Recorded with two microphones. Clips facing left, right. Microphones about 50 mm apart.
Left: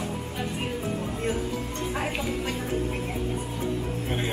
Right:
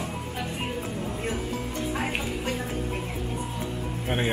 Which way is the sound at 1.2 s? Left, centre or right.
Centre.